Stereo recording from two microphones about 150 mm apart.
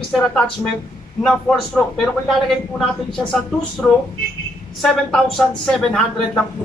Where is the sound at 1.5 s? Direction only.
Centre (ahead or behind).